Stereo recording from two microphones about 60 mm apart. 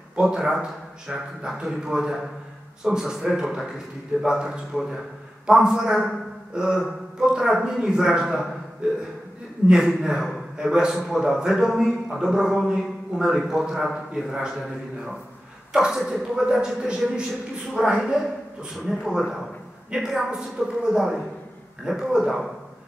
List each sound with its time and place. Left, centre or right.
0.1 s a man's voice: centre
8.8 s a man's voice: centre